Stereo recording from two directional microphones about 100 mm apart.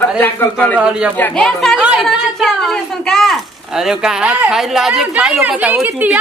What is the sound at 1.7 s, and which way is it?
Speech, 10° right (ahead or behind).